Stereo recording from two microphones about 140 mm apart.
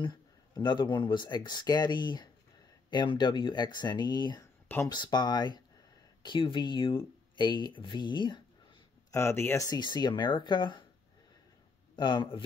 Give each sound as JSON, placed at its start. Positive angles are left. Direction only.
{"t": 0.0, "sound": "speech", "side_deg": 35}
{"t": 9.1, "sound": "speech", "side_deg": 20}
{"t": 9.7, "sound": "speech", "side_deg": 30}
{"t": 11.9, "sound": "a man's voice", "side_deg": 35}